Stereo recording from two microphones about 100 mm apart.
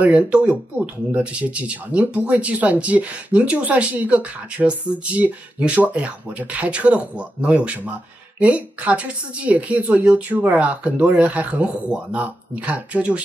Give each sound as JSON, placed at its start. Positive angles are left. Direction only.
{"t": 0.0, "sound": "speech", "side_deg": -10}